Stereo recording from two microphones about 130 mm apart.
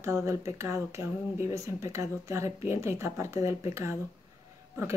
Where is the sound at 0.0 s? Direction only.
25° right (ahead or behind).